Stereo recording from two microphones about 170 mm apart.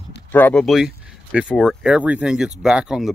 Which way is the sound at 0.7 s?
5° right (ahead or behind).